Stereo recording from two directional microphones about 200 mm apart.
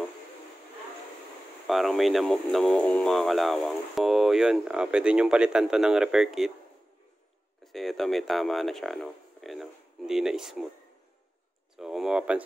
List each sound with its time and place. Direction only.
1.7 s speech: centre (ahead or behind)
7.6 s speech: centre (ahead or behind)
11.7 s a sound: centre (ahead or behind)